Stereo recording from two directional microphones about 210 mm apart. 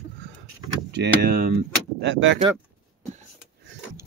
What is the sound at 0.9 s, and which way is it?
Speech, 50° right (ahead or behind).